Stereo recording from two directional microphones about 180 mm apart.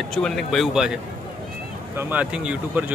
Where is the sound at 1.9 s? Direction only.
10° right (ahead or behind).